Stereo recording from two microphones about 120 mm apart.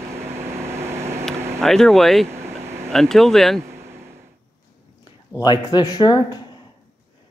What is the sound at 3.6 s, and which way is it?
Vehicle, 20° right (ahead or behind).